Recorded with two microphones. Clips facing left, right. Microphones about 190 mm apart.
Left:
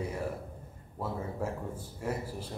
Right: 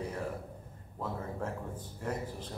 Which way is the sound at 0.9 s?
10° left (ahead or behind).